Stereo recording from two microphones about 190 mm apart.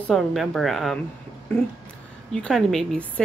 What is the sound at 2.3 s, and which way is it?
Speech, 5° left (ahead or behind).